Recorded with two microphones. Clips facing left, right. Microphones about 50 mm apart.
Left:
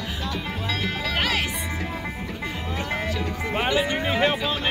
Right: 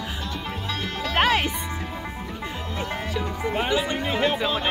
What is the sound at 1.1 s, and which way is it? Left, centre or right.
Music, right.